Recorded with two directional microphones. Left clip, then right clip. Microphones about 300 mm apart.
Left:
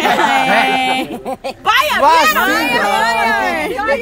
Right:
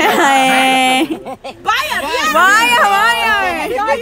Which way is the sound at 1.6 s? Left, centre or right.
Centre.